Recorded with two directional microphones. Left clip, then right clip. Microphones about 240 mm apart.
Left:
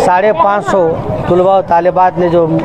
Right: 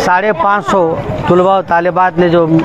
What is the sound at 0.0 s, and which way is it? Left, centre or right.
A man's voice, right.